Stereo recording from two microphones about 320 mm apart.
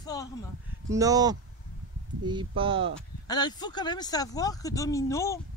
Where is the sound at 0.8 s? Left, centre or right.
Centre.